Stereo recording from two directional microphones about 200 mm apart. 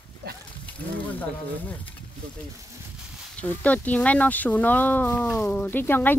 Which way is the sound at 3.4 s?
10° left (ahead or behind).